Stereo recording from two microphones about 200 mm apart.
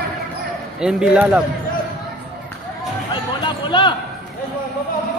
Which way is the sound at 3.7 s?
25° left (ahead or behind).